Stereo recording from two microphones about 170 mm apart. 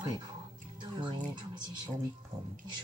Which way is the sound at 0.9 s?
25° right (ahead or behind).